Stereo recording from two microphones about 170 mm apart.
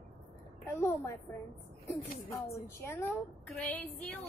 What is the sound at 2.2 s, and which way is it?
A woman's voice, 20° left (ahead or behind).